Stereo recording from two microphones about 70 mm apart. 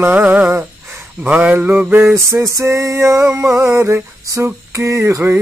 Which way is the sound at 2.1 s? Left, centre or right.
Right.